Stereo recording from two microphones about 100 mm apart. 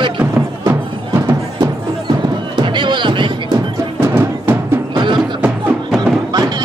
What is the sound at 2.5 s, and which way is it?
Music, 50° right (ahead or behind).